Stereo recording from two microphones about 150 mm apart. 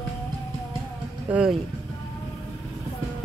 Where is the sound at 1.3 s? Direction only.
5° right (ahead or behind).